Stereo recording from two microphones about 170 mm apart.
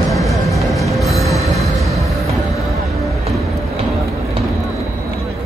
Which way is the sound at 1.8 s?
20° right (ahead or behind).